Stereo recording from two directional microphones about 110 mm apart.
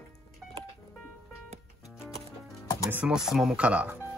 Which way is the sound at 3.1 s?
5° right (ahead or behind).